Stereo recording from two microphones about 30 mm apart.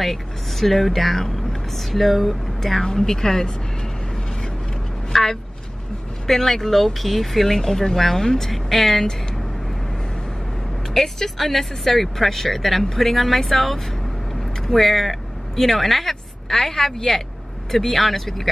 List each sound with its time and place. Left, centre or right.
0.0 s speech: centre
3.0 s speech: centre
5.1 s a woman's voice: centre
10.9 s speech: centre